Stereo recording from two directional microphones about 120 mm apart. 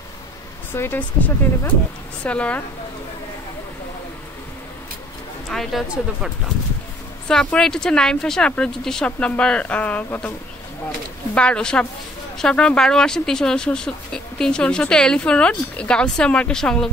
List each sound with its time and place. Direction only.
0.7 s speech: 15° left (ahead or behind)
5.5 s speech: centre (ahead or behind)
11.3 s speech: 10° left (ahead or behind)